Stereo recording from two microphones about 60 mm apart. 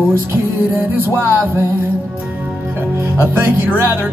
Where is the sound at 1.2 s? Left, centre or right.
Right.